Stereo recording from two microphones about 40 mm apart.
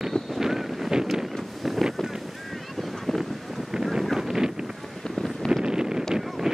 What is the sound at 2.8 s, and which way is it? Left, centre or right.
Boat, centre.